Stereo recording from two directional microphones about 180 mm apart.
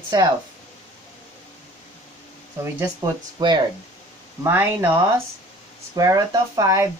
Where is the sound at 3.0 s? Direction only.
20° right (ahead or behind).